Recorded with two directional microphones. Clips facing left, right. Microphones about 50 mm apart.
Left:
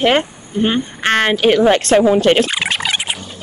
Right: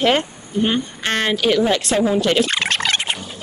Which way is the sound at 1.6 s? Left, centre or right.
Left.